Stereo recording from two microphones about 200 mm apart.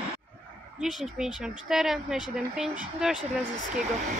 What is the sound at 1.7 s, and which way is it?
Speech, centre (ahead or behind).